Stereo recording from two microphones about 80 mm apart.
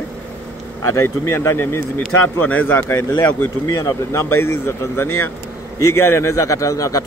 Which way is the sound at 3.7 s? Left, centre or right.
Left.